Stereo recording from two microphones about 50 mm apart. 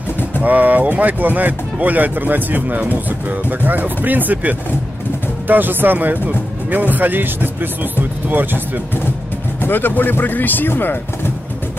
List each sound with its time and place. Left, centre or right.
0.4 s speech: right
9.6 s speech: left